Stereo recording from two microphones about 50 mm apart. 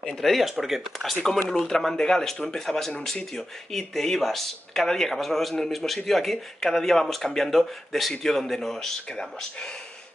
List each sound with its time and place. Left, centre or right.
0.0 s speech: centre
8.7 s speech: centre
9.2 s speech: centre